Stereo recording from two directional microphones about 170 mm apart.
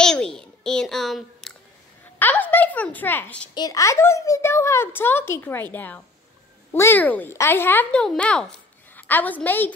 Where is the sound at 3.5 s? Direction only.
20° left (ahead or behind).